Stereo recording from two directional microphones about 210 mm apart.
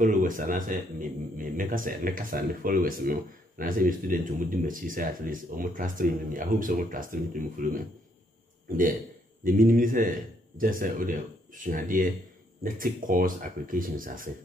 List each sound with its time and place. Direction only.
0.0 s a man's voice: 40° right (ahead or behind)